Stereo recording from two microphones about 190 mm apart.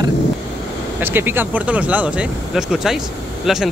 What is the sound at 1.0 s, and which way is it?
Speech, 10° right (ahead or behind).